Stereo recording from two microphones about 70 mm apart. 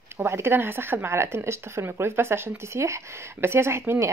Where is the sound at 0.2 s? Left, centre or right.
Right.